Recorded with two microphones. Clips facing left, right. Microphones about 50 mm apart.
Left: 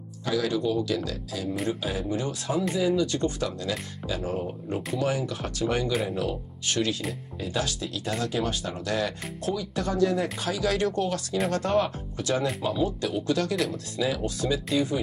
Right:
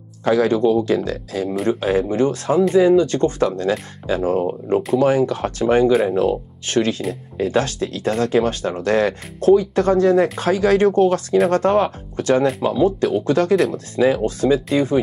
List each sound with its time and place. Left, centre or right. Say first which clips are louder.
0.2 s speech: right 10 dB; right